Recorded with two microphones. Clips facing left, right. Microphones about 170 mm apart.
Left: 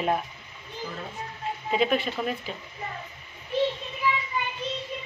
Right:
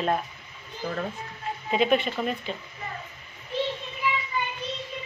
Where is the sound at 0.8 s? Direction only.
55° right (ahead or behind).